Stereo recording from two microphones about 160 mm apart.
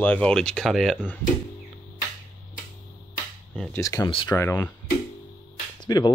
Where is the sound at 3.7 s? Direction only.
20° left (ahead or behind).